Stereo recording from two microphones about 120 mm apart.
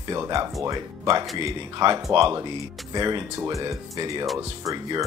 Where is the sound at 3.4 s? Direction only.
25° right (ahead or behind).